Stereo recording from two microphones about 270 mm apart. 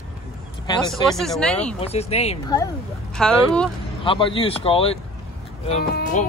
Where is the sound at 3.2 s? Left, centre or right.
Centre.